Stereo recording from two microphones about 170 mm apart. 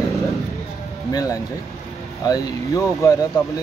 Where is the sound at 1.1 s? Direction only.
20° left (ahead or behind).